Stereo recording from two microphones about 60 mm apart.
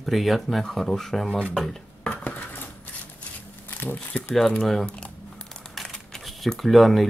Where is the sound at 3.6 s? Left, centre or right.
Left.